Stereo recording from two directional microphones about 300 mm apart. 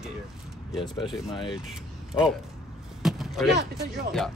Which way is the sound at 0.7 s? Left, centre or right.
Centre.